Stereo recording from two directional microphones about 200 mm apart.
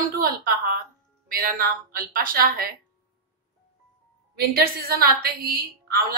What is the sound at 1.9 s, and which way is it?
Speech, 45° right (ahead or behind).